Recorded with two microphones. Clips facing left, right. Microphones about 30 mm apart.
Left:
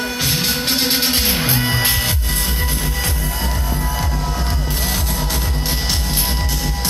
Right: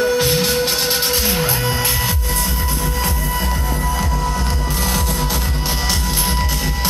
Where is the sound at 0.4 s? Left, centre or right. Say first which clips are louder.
Right 1 dB; centre.